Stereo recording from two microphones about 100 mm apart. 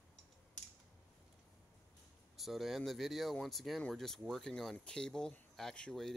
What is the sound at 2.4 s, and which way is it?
Speech, centre (ahead or behind).